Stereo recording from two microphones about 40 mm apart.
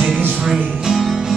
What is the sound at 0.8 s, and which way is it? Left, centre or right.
Music, centre.